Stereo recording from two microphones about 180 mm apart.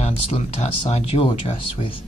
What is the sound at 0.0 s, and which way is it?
Speech, 35° left (ahead or behind).